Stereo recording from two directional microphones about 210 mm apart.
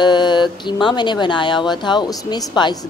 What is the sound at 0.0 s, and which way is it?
Speech, 20° left (ahead or behind).